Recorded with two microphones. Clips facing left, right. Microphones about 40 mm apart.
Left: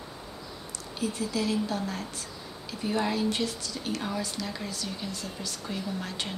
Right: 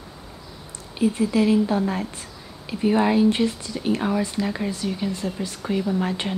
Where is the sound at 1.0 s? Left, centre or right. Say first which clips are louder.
Right 10 dB; right.